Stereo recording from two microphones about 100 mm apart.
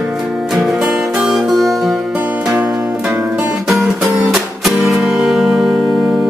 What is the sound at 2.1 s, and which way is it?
Music, 15° right (ahead or behind).